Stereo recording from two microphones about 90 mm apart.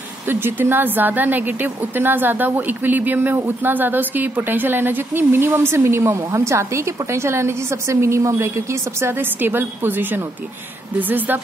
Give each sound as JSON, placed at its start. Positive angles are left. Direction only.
{"t": 0.3, "sound": "speech", "side_deg": -25}